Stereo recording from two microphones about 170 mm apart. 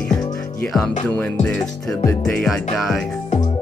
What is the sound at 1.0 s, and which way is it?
Music, 10° left (ahead or behind).